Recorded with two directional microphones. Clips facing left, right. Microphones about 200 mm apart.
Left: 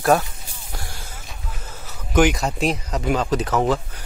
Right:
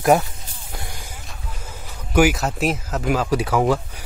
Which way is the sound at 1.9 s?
10° right (ahead or behind).